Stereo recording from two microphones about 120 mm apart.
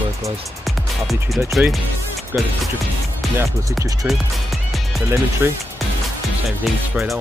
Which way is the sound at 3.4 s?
20° right (ahead or behind).